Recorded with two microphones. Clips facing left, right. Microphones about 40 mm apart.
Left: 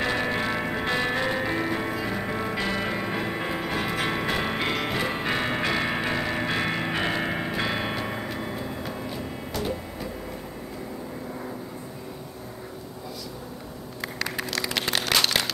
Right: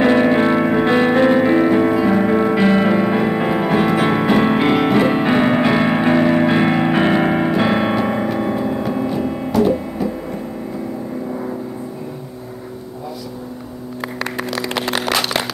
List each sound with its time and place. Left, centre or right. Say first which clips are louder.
0.0 s music: right 13 dB; right
9.5 s music: right 15 dB; centre
14.3 s a sound: right 6 dB; centre